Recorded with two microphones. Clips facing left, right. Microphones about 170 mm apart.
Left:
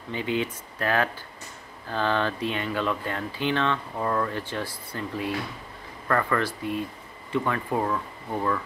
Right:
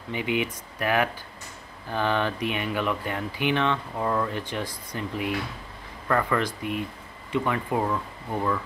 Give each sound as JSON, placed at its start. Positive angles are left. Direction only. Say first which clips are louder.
{"t": 0.1, "sound": "speech", "louder": "even", "side_deg": -15}
{"t": 4.3, "sound": "speech", "louder": "even", "side_deg": -15}